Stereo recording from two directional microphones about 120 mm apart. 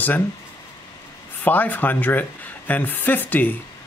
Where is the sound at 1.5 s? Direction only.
15° left (ahead or behind).